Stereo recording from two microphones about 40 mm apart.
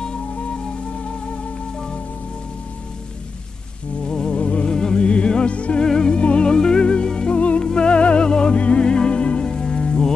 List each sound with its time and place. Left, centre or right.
4.1 s music: left
5.9 s music: left